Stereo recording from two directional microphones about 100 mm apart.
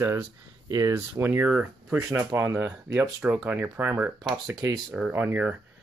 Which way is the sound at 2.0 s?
25° right (ahead or behind).